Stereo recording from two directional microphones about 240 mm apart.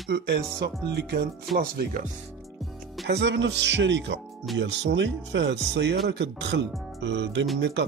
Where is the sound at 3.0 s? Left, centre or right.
Right.